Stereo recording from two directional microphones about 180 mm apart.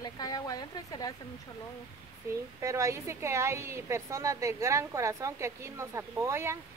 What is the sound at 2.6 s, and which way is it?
Speech, 15° right (ahead or behind).